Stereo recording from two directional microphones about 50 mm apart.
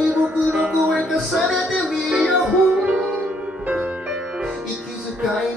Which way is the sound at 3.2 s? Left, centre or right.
Right.